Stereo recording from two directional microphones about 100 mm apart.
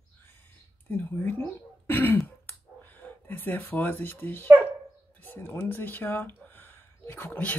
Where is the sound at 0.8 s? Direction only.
20° left (ahead or behind).